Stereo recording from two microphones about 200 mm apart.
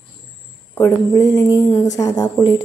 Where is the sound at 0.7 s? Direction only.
15° left (ahead or behind).